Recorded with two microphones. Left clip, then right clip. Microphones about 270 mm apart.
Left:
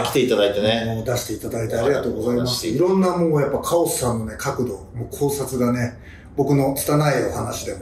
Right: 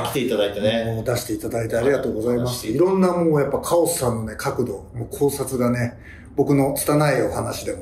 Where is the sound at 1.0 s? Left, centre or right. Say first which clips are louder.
Right 1 dB; centre.